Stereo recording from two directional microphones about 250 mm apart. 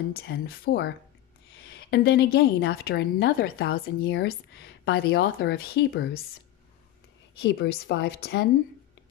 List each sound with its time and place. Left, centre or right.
0.3 s a woman's voice: left
7.4 s a woman's voice: left